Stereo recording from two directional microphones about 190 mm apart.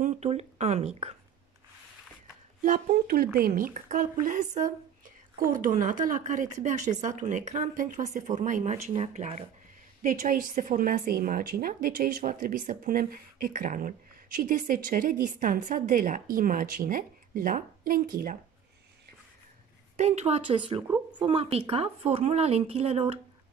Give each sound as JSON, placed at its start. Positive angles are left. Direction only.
{"t": 0.0, "sound": "a sound", "side_deg": -35}
{"t": 2.6, "sound": "a woman's voice", "side_deg": -50}
{"t": 20.0, "sound": "a woman's voice", "side_deg": -35}